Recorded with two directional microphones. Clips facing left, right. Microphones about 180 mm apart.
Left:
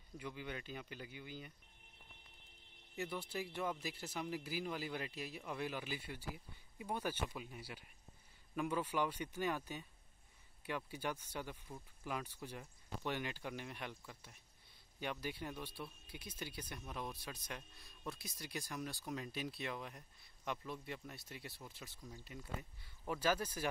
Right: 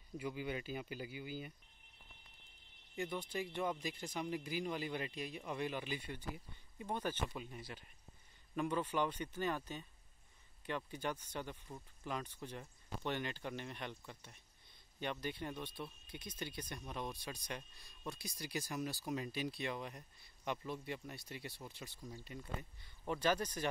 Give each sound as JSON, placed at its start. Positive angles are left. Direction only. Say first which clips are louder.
{"t": 0.2, "sound": "speech", "louder": "right 5 dB", "side_deg": -10}
{"t": 3.0, "sound": "speech", "louder": "right 2 dB", "side_deg": 5}
{"t": 10.9, "sound": "speech", "louder": "right 1 dB", "side_deg": 10}